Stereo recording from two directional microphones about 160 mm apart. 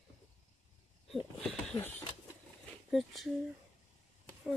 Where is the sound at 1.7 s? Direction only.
10° left (ahead or behind).